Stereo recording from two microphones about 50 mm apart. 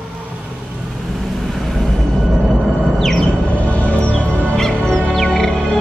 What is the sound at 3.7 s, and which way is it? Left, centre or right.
Music, left.